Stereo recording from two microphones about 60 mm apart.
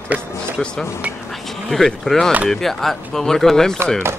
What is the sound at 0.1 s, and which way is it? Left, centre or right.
Speech, right.